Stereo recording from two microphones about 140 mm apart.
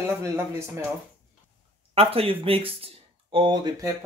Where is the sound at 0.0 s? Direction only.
20° right (ahead or behind).